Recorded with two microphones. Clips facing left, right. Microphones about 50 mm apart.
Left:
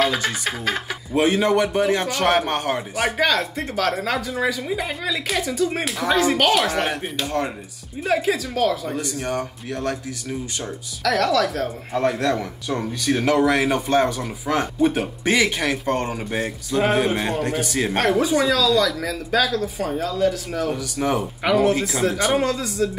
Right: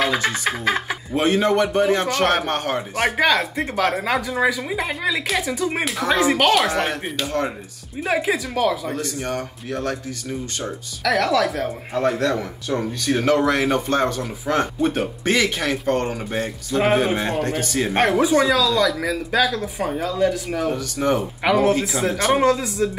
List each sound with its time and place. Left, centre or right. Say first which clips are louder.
0.0 s speech: even; centre
0.3 s a man's voice: right 3 dB; centre
0.7 s speech: right 3 dB; centre
1.1 s a man's voice: even; centre
8.1 s a man's voice: even; centre
8.9 s a man's voice: even; centre
17.9 s a man's voice: right 2 dB; centre
22.4 s a man's voice: right 5 dB; centre